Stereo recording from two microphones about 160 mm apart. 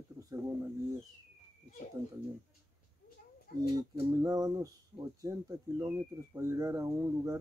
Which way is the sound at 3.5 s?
70° left (ahead or behind).